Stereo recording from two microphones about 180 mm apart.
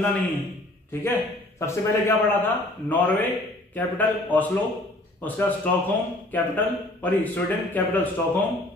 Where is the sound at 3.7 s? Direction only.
10° left (ahead or behind).